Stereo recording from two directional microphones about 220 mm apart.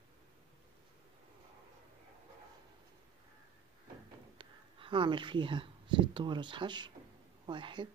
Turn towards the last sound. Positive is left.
turn(degrees=-20)  # may be behind; listen again after turning